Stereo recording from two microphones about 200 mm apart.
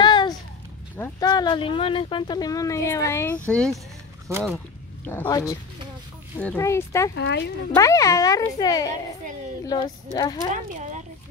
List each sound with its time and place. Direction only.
0.0 s a sound: 20° left (ahead or behind)
1.2 s speech: 20° left (ahead or behind); by 3.8 s 5° left (ahead or behind)
5.0 s speech: 10° left (ahead or behind)
7.2 s speech: 60° left (ahead or behind)
7.7 s speech: 15° left (ahead or behind)
10.1 s speech: 20° left (ahead or behind)
10.5 s speech: 35° right (ahead or behind)